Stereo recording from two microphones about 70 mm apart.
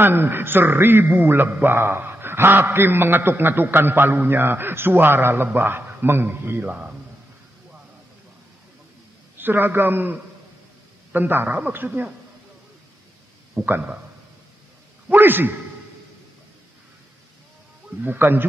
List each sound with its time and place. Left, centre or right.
0.0 s a man's voice: right
6.6 s speech: centre
9.4 s a man's voice: right
13.7 s a man's voice: right
15.0 s a man's voice: right
17.8 s a man's voice: right